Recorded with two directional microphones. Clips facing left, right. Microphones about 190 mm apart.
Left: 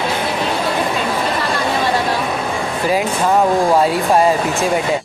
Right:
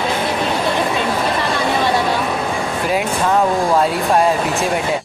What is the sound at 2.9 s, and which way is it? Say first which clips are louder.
Speech: left 2 dB; centre (ahead or behind).